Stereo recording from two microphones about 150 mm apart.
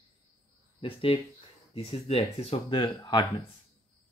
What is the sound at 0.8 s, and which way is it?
Speech, 35° left (ahead or behind).